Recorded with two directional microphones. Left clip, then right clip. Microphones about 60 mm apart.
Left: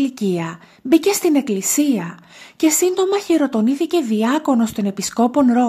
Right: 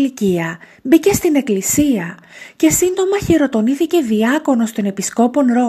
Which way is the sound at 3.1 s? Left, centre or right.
Right.